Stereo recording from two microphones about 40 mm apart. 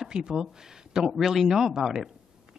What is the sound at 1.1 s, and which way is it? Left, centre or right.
Speech, centre.